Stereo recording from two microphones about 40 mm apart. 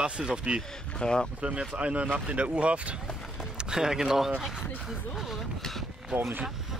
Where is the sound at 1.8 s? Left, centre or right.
Right.